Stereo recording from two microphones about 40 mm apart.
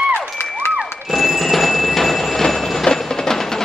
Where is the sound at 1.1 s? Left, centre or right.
Centre.